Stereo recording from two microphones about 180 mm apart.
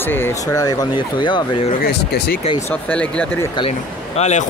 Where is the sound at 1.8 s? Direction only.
60° left (ahead or behind).